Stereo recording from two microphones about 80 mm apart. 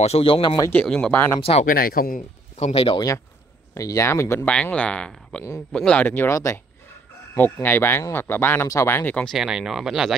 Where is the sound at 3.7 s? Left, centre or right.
Left.